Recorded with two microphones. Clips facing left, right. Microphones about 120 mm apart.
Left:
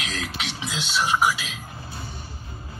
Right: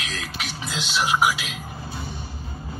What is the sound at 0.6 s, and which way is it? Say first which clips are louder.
Speech: right 1 dB; centre (ahead or behind).